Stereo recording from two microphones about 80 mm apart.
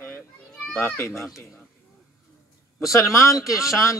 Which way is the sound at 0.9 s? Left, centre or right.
Left.